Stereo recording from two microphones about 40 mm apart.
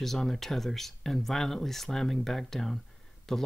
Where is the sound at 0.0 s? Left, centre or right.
Centre.